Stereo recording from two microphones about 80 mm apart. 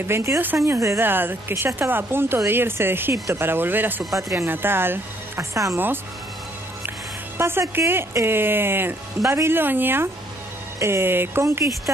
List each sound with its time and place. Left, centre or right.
0.0 s speech: right
1.0 s speech: right
4.2 s speech: right
4.5 s speech: right
7.3 s speech: right